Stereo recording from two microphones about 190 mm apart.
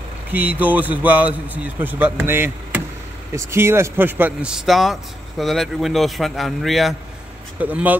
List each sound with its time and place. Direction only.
0.3 s a man's voice: 10° right (ahead or behind)